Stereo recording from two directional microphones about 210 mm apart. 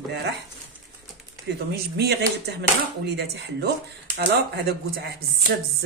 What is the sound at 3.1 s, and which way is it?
Speech, 55° right (ahead or behind).